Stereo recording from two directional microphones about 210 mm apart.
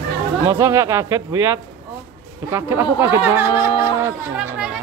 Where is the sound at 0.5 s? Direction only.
15° right (ahead or behind).